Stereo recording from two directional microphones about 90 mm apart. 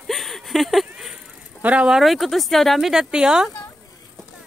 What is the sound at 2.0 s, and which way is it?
Speech, centre (ahead or behind).